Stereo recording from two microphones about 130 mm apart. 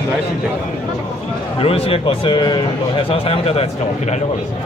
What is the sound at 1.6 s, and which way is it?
A man's voice, 45° left (ahead or behind).